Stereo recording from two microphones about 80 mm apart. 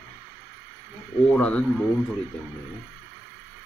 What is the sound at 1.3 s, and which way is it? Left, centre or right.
Speech, centre.